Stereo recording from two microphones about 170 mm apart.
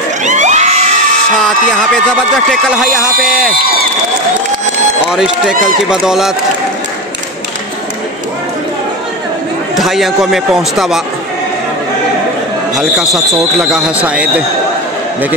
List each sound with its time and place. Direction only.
0.2 s children shouting: 45° right (ahead or behind)
2.7 s speech: 5° right (ahead or behind)
5.9 s speech: 5° right (ahead or behind)
9.8 s speech: centre (ahead or behind)
12.7 s speech: centre (ahead or behind)